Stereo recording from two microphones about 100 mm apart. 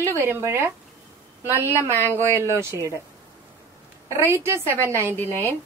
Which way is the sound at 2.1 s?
25° right (ahead or behind).